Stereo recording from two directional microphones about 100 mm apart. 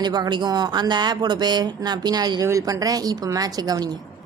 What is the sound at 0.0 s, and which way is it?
Speech, 45° right (ahead or behind).